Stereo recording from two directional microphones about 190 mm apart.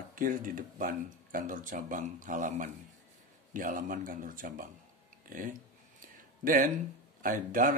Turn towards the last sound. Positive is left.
turn(degrees=-45)  # may be behind; listen again after turning